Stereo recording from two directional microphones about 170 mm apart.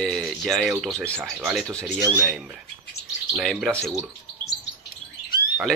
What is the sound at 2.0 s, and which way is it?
Speech, 15° right (ahead or behind).